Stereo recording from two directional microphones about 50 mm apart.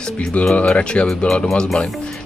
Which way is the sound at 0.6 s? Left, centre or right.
Left.